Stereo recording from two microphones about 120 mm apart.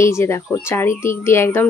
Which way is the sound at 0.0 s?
25° left (ahead or behind).